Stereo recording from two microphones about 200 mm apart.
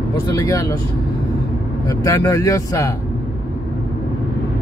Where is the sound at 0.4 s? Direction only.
15° left (ahead or behind).